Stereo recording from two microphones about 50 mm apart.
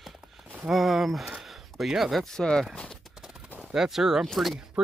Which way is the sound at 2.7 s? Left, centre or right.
Left.